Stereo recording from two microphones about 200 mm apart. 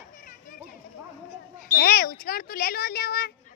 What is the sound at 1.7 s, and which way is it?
Speech, 50° left (ahead or behind).